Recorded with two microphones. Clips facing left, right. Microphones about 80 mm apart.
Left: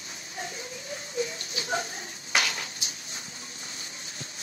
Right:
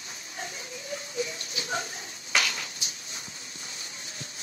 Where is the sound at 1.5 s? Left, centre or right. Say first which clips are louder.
Left 2 dB; left.